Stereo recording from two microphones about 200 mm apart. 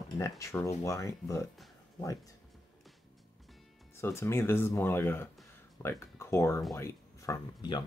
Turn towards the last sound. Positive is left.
turn(degrees=20)  # may be behind; listen again after turning